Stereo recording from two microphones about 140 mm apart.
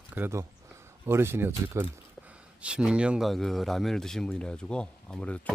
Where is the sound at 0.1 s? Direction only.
15° right (ahead or behind).